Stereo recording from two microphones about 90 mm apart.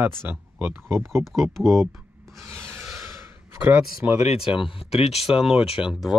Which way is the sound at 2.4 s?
30° right (ahead or behind).